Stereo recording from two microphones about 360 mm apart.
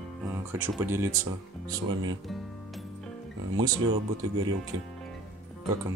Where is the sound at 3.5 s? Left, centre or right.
Centre.